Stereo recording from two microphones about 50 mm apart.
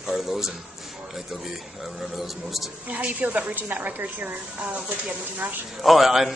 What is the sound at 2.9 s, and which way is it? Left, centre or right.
A woman's voice, right.